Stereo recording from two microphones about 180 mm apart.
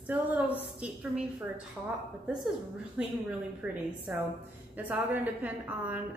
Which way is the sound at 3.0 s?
5° right (ahead or behind).